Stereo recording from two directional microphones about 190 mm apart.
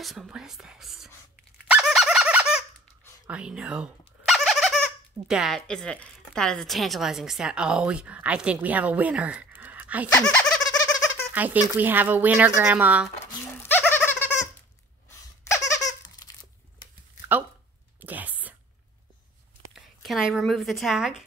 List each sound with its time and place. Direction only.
0.0 s whispering: centre (ahead or behind)
1.7 s fowl: centre (ahead or behind)
3.3 s speech: 5° right (ahead or behind)
10.2 s a sound: 5° left (ahead or behind)
11.3 s speech: 10° right (ahead or behind)
13.2 s dog: 10° left (ahead or behind)
15.4 s a sound: 15° left (ahead or behind)
18.0 s a sound: 10° right (ahead or behind)
19.7 s speech: centre (ahead or behind)